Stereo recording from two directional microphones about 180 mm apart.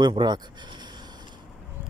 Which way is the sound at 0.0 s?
25° right (ahead or behind).